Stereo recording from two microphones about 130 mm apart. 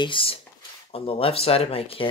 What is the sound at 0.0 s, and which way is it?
Speech, 40° left (ahead or behind).